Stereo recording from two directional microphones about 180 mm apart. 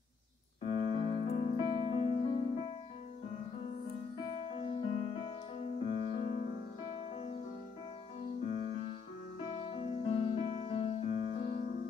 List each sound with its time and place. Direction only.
0.7 s keyboard: 30° left (ahead or behind)
4.3 s music: 30° left (ahead or behind)
9.5 s keyboard: 30° left (ahead or behind)